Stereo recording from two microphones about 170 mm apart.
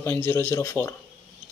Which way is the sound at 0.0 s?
15° left (ahead or behind).